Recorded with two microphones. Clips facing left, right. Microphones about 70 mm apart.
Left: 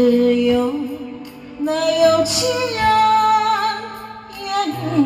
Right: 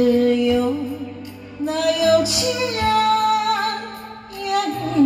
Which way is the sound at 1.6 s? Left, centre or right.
Left.